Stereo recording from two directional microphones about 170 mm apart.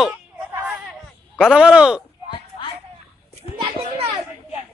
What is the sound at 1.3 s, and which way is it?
Speech, 5° right (ahead or behind).